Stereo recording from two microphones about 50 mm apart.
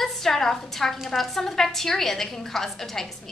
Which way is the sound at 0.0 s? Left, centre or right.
Centre.